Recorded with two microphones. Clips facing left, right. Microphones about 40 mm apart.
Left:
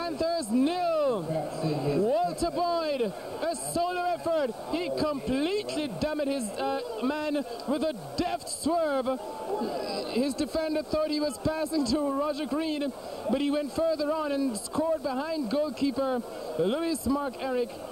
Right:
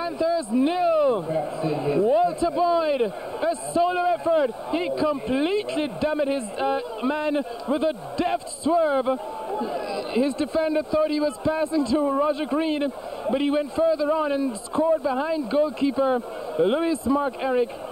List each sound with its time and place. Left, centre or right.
0.0 s a man's voice: right